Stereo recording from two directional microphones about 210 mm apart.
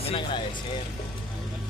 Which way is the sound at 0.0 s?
25° left (ahead or behind).